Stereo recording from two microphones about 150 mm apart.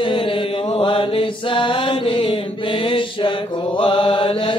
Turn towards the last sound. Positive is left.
turn(degrees=35)  # may be behind; listen again after turning